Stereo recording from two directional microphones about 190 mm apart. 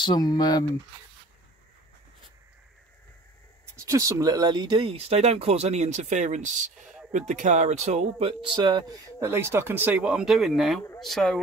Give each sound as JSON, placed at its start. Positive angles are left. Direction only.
{"t": 0.0, "sound": "speech", "side_deg": 25}
{"t": 3.7, "sound": "speech", "side_deg": -15}